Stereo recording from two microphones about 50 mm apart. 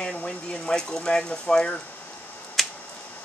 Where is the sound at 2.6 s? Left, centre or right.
Centre.